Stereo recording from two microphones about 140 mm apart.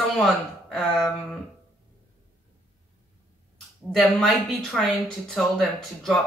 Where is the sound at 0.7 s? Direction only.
Centre (ahead or behind).